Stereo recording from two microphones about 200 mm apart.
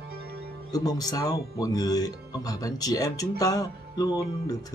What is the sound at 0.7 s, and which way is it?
Speech, 20° left (ahead or behind).